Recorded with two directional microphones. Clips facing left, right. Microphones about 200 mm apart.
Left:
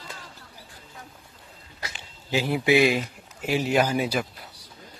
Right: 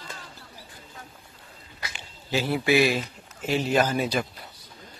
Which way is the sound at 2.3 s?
15° left (ahead or behind).